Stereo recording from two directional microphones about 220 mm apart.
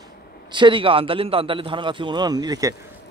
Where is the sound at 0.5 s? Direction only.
20° right (ahead or behind).